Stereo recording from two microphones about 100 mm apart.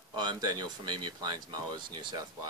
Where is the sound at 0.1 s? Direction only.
45° right (ahead or behind).